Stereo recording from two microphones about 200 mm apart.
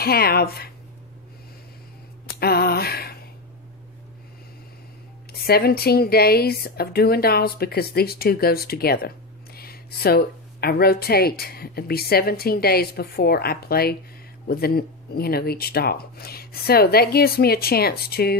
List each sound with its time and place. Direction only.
0.0 s speech: 50° left (ahead or behind)
2.2 s a sound: 50° left (ahead or behind)
5.5 s speech: 50° left (ahead or behind)